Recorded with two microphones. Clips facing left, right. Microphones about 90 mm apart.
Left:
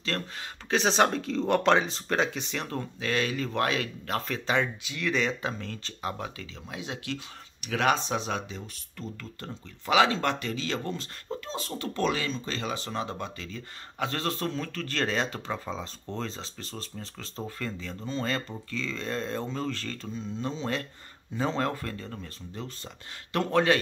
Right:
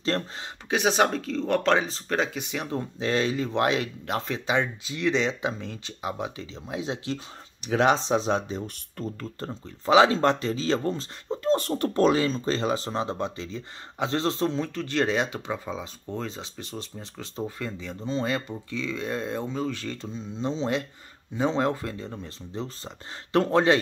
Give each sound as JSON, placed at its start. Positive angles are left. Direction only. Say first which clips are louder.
{"t": 0.0, "sound": "speech", "louder": "right 5 dB", "side_deg": -30}
{"t": 0.7, "sound": "speech", "louder": "right 1 dB", "side_deg": -10}
{"t": 3.0, "sound": "speech", "louder": "right 4 dB", "side_deg": -25}
{"t": 11.7, "sound": "speech", "louder": "right 3 dB", "side_deg": -40}